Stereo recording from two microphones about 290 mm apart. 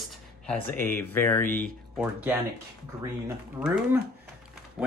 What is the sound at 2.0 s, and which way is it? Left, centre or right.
Speech, centre.